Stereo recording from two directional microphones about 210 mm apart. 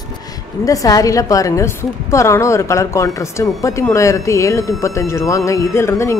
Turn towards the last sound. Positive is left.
turn(degrees=15)  # may be behind; listen again after turning